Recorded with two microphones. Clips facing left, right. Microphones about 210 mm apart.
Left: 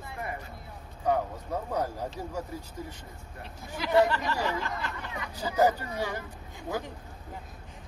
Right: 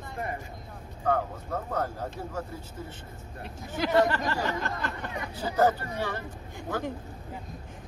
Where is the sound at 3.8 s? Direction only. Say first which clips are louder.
Even; 45° right (ahead or behind).